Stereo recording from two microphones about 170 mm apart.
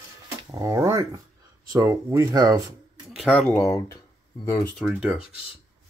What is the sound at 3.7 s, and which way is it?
Speech, 20° left (ahead or behind).